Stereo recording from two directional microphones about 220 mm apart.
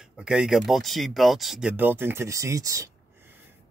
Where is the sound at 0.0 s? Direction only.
5° right (ahead or behind).